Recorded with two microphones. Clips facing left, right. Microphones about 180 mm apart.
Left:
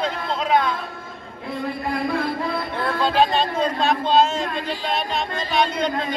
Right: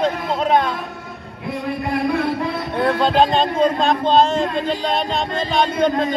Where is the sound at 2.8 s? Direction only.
20° right (ahead or behind).